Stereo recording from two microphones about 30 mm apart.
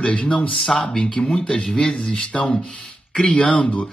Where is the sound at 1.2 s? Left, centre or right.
Left.